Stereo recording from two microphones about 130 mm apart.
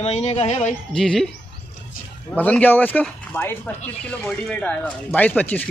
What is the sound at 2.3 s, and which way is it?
Speech, 10° left (ahead or behind).